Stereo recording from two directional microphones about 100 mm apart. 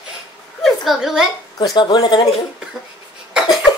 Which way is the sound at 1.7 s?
50° left (ahead or behind).